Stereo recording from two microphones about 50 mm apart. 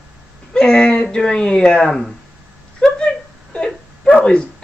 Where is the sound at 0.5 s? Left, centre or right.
Centre.